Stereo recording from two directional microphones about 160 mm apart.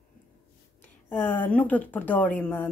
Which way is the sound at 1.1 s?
10° left (ahead or behind).